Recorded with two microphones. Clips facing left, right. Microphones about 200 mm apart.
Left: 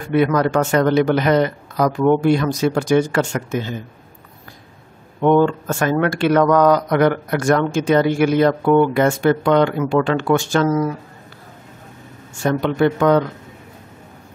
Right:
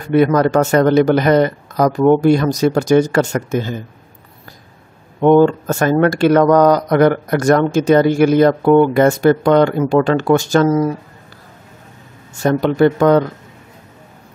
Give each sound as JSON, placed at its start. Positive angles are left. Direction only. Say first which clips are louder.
{"t": 0.1, "sound": "speech", "louder": "right 4 dB", "side_deg": -40}
{"t": 5.2, "sound": "speech", "louder": "right 4 dB", "side_deg": -35}
{"t": 12.4, "sound": "speech", "louder": "right 4 dB", "side_deg": -40}